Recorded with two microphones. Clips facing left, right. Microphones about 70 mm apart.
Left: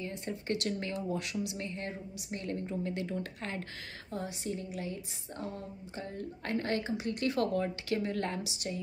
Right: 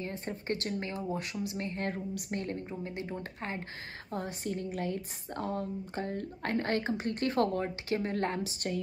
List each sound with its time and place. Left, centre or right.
0.0 s speech: right
1.9 s a woman's voice: right
2.4 s speech: right
4.1 s a woman's voice: right